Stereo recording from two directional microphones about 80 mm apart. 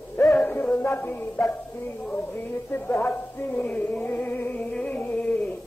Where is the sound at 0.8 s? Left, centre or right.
Left.